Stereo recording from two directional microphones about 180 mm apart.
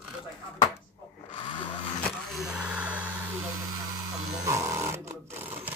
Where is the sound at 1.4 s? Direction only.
30° left (ahead or behind).